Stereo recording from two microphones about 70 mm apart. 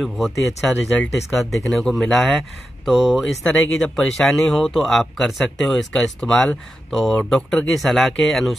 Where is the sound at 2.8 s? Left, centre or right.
Centre.